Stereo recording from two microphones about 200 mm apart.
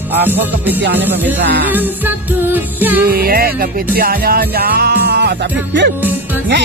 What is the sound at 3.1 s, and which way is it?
Music, 45° right (ahead or behind).